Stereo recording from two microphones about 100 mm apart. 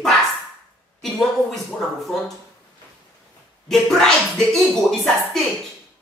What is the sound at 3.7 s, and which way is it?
Speech, 5° left (ahead or behind).